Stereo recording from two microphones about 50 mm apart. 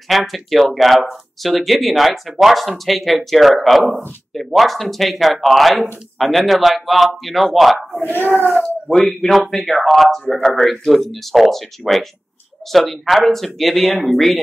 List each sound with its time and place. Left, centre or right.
0.1 s speech: centre
8.1 s speech: right
8.8 s speech: centre